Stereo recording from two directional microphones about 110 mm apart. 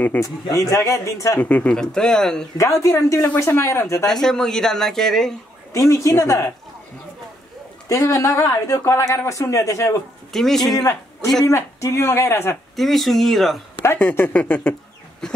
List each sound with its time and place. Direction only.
0.2 s speech: 30° left (ahead or behind)
1.4 s speech: 10° left (ahead or behind)
2.5 s speech: 30° left (ahead or behind)
4.0 s speech: 5° left (ahead or behind)
5.7 s speech: 30° left (ahead or behind)
7.9 s speech: 30° left (ahead or behind)
10.3 s speech: 5° left (ahead or behind)
10.7 s a man's voice: 30° left (ahead or behind)
12.7 s speech: centre (ahead or behind)
13.8 s speech: 15° left (ahead or behind)